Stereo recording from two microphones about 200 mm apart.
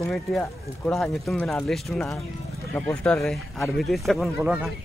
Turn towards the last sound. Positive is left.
turn(degrees=-5)  # may be behind; listen again after turning